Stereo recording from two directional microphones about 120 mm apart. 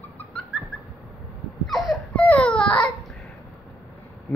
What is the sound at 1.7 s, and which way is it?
Baby cry, centre (ahead or behind).